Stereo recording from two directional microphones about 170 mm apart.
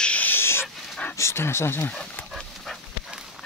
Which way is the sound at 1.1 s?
15° left (ahead or behind).